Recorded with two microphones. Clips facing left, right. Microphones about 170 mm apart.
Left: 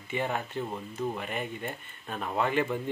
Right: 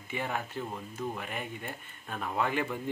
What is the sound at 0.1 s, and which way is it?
Speech, 5° right (ahead or behind).